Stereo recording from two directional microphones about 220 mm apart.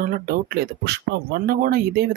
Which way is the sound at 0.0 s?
40° right (ahead or behind).